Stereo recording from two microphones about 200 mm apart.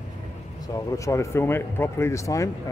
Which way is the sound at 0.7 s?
15° left (ahead or behind).